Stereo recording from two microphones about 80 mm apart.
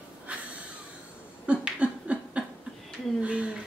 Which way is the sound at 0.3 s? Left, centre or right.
Centre.